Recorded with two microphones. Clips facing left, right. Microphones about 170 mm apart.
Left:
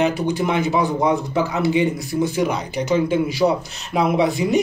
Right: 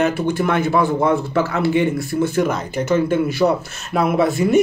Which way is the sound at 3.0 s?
15° left (ahead or behind).